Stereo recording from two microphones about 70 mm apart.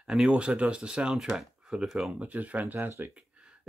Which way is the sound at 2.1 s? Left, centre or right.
Centre.